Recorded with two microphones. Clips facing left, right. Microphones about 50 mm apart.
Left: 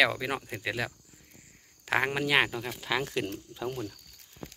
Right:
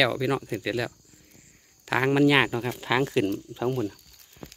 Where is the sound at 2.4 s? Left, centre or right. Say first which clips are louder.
Right 6 dB; right.